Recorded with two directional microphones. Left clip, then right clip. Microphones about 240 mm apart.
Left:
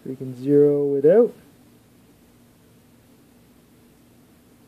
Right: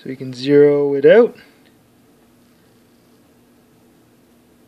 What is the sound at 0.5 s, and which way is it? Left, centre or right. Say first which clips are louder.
Speech: right 5 dB; centre.